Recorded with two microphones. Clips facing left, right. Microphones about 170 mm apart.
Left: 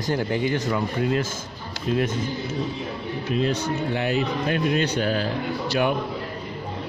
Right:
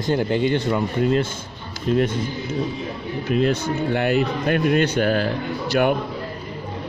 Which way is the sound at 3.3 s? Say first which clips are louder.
Right 4 dB; 55° right (ahead or behind).